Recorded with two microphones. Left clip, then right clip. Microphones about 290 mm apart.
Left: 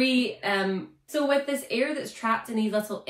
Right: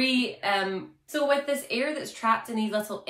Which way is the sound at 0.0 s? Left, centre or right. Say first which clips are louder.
Left 1 dB; centre.